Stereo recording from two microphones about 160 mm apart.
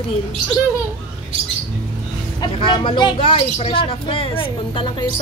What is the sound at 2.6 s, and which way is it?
Speech, 30° left (ahead or behind).